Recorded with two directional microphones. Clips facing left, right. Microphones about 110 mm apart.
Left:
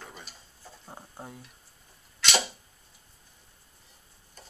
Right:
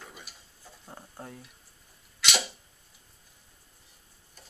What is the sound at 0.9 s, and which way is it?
Speech, 15° left (ahead or behind).